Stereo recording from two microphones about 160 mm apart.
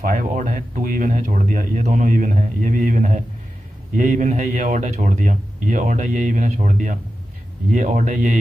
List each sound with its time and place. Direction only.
0.0 s a man's voice: 60° right (ahead or behind)